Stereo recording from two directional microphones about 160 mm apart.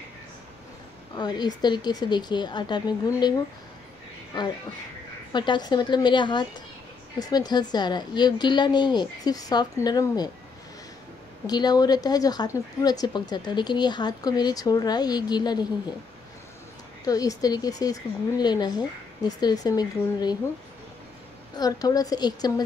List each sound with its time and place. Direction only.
1.1 s speech: 25° left (ahead or behind)
5.3 s speech: 30° left (ahead or behind)
11.4 s speech: 25° left (ahead or behind)
17.0 s speech: 20° left (ahead or behind)
21.5 s speech: 25° left (ahead or behind)